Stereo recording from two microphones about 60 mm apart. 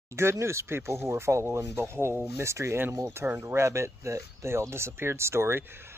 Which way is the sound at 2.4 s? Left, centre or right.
Right.